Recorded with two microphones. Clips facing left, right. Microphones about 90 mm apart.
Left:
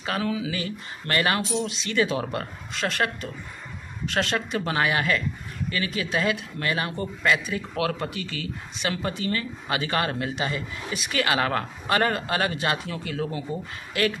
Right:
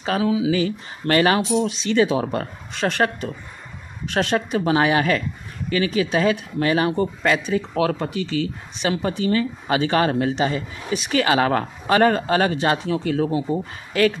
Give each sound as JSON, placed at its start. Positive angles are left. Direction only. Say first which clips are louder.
{"t": 0.2, "sound": "speech", "louder": "right 9 dB", "side_deg": -15}
{"t": 1.0, "sound": "speech", "louder": "right 7 dB", "side_deg": -30}
{"t": 1.7, "sound": "speech", "louder": "right 6 dB", "side_deg": -20}